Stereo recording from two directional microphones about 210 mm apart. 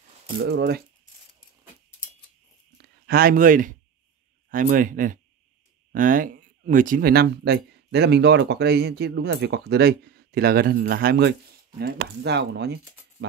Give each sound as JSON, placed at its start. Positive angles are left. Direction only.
{"t": 0.4, "sound": "speech", "side_deg": -50}
{"t": 2.8, "sound": "speech", "side_deg": -45}